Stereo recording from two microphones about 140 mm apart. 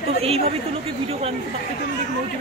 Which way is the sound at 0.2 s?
45° right (ahead or behind).